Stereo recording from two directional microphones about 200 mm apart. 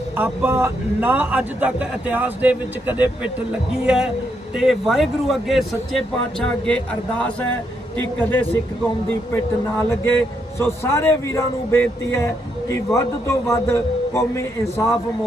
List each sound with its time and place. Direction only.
0.2 s a man's voice: 10° right (ahead or behind); by 15.0 s 15° left (ahead or behind)